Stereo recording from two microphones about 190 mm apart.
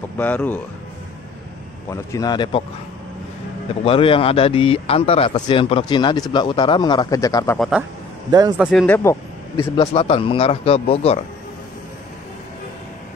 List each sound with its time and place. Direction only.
0.2 s speech: 5° left (ahead or behind)
1.9 s speech: 20° left (ahead or behind)
3.8 s speech: 30° left (ahead or behind)
7.5 s a man's voice: centre (ahead or behind)
8.3 s a man's voice: 20° right (ahead or behind)
8.6 s speech: 10° left (ahead or behind)
9.6 s speech: 25° left (ahead or behind)